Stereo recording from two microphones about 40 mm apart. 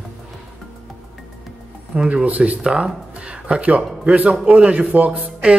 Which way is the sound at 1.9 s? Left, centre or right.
Right.